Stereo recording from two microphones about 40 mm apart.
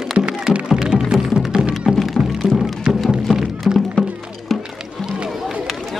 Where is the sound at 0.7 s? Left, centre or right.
Centre.